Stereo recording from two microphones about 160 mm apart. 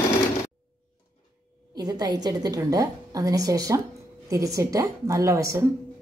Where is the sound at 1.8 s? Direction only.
25° right (ahead or behind).